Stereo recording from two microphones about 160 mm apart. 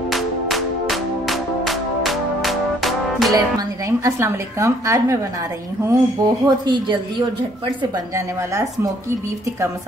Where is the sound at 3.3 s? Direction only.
20° right (ahead or behind).